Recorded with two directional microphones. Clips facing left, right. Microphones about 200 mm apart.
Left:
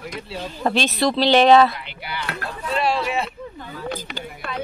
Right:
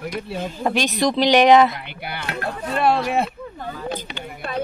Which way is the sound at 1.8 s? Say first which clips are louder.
Even; 55° right (ahead or behind).